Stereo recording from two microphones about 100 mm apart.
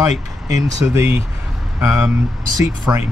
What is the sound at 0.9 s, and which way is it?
Speech, 20° right (ahead or behind).